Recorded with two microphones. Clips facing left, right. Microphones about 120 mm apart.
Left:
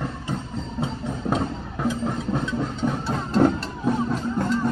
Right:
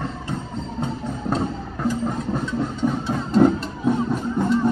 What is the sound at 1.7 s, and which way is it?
Music, centre (ahead or behind).